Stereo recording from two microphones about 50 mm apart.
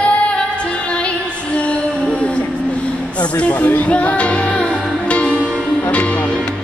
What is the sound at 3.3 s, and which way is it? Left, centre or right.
Speech, left.